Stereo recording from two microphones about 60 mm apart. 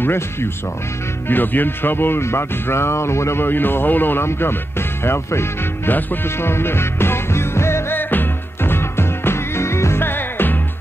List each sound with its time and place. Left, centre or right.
0.0 s speech: left
6.2 s music: left
8.0 s music: left